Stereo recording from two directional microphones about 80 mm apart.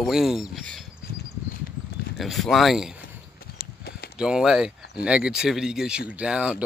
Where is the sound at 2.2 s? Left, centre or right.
Centre.